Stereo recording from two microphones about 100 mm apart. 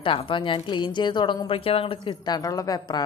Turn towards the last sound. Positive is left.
turn(degrees=45)  # may be behind; listen again after turning